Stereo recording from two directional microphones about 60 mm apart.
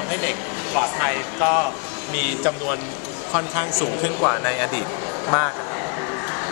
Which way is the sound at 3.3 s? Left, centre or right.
Right.